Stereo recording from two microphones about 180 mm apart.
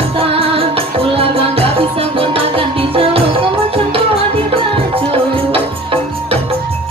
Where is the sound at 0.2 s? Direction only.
30° right (ahead or behind).